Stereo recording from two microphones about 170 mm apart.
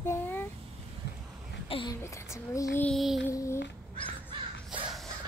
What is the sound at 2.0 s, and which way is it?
Speech, 15° left (ahead or behind).